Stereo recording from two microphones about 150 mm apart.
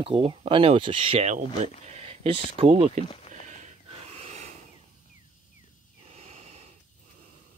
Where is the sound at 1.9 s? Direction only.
40° right (ahead or behind).